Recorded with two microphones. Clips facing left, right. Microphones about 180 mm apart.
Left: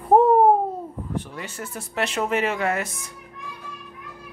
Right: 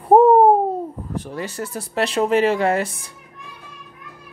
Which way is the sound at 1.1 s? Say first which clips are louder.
Right 3 dB; 40° right (ahead or behind).